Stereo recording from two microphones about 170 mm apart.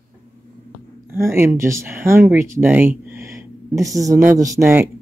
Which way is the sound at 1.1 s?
15° right (ahead or behind).